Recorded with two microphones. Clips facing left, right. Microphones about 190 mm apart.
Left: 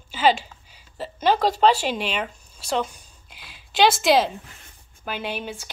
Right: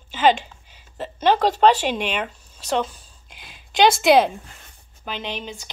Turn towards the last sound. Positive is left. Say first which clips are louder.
# left 1 dB
turn(degrees=10)  # may be behind; listen again after turning